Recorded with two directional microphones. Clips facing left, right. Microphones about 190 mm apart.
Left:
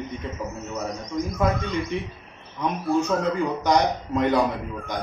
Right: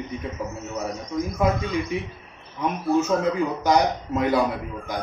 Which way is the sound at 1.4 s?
Centre (ahead or behind).